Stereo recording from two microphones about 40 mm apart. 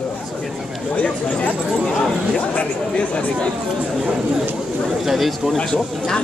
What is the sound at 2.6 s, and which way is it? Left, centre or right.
Speech, left.